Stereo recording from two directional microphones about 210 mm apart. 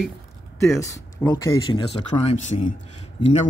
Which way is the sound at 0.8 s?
15° left (ahead or behind).